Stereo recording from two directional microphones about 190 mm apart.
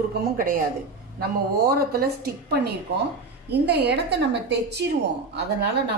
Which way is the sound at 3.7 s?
60° right (ahead or behind).